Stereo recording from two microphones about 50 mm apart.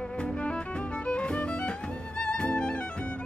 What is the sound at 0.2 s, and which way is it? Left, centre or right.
Music, left.